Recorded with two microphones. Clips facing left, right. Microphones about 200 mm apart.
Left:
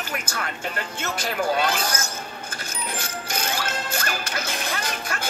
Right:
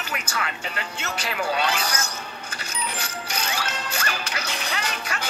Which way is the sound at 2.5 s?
50° left (ahead or behind).